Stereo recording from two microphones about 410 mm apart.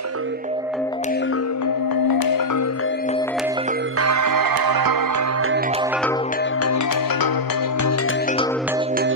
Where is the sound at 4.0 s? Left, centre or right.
Right.